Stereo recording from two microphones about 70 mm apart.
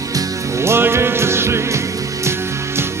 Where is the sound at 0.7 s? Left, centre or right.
Right.